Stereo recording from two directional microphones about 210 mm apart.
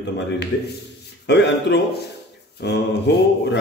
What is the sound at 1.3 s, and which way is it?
A man's voice, 55° left (ahead or behind).